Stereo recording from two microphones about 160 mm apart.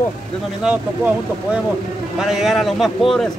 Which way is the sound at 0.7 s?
5° right (ahead or behind).